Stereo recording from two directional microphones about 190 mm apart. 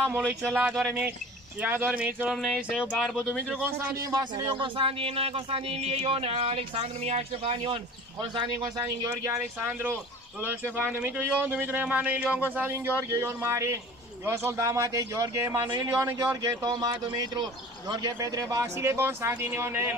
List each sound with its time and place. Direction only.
0.5 s a man's voice: 5° right (ahead or behind)